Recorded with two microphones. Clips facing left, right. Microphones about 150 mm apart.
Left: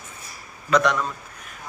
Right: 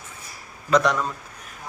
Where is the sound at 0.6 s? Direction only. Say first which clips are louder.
Even; 35° right (ahead or behind).